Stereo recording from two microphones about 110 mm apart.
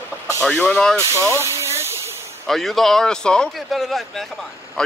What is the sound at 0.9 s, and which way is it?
Hiss, 25° right (ahead or behind).